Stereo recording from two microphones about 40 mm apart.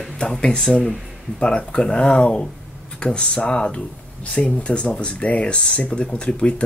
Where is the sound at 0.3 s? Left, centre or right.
Centre.